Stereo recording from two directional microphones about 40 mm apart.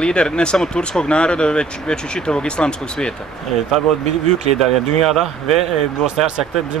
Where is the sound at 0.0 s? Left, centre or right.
Left.